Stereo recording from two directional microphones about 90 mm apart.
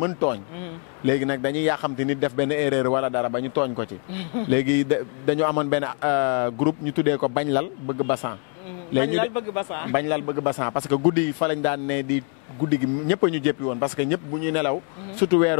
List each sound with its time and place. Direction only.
0.0 s a man's voice: 20° left (ahead or behind)